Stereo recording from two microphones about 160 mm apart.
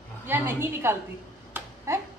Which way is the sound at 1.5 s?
15° right (ahead or behind).